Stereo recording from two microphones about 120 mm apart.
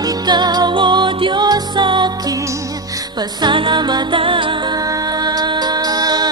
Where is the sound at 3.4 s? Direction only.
40° right (ahead or behind).